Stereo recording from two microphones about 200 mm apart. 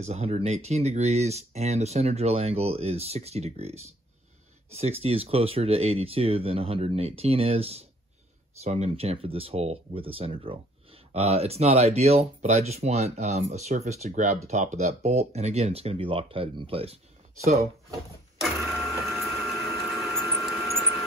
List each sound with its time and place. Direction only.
0.0 s speech: 30° right (ahead or behind)
18.4 s printer: centre (ahead or behind)
20.2 s a sound: centre (ahead or behind)